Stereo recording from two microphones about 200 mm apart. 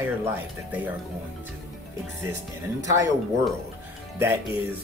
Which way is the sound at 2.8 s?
15° right (ahead or behind).